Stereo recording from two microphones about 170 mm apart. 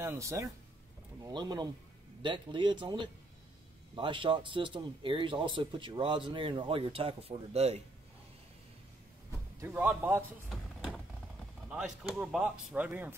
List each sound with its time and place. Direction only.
0.0 s a man's voice: 15° right (ahead or behind); by 7.8 s 40° right (ahead or behind)
9.6 s speech: 10° right (ahead or behind)
11.7 s speech: 5° right (ahead or behind)